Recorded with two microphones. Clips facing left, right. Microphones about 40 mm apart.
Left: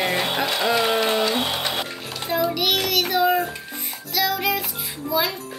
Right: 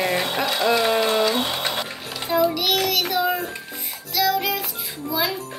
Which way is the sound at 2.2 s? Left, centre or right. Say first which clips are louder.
Right 2 dB; centre.